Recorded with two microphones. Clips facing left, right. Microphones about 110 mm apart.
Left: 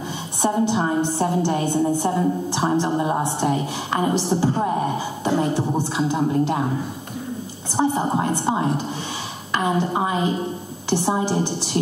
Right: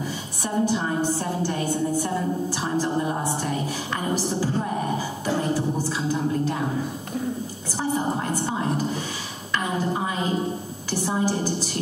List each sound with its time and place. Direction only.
0.4 s a woman's voice: 25° left (ahead or behind)
7.7 s a woman's voice: 25° left (ahead or behind)